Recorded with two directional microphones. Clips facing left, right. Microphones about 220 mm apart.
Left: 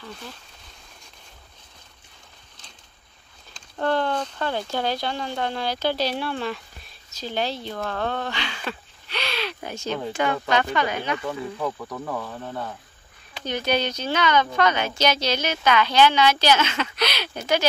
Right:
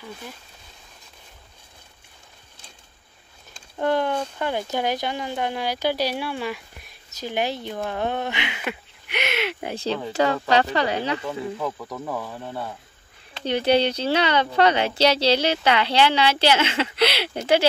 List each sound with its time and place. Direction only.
0.0 s speech: 10° right (ahead or behind)
3.5 s speech: 15° right (ahead or behind)
10.2 s speech: 35° right (ahead or behind)
11.6 s speech: centre (ahead or behind)
13.4 s speech: 30° right (ahead or behind)